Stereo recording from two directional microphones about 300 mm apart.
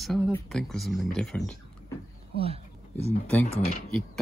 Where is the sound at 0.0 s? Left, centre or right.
Centre.